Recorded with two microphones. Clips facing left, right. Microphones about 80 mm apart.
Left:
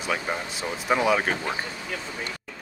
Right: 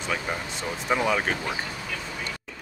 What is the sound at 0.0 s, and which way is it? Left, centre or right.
Speech, centre.